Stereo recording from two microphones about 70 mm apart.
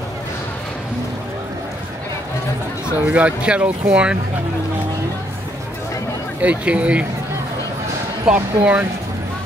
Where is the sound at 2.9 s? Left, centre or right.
Centre.